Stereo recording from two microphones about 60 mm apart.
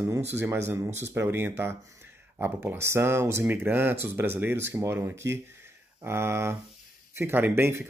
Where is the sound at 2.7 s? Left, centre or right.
Right.